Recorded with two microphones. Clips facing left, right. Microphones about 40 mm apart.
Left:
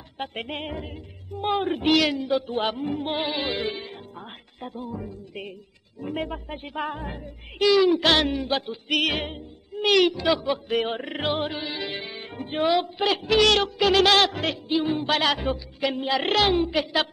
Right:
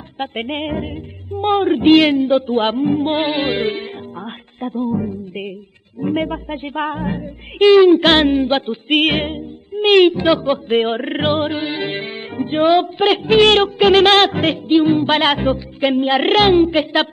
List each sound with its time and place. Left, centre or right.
0.2 s a woman's voice: right